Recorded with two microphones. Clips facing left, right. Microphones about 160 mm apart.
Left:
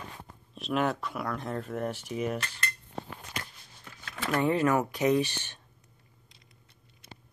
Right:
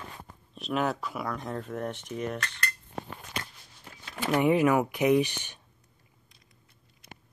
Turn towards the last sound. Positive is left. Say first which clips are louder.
# right 3 dB
turn(degrees=-15)  # may be behind; listen again after turning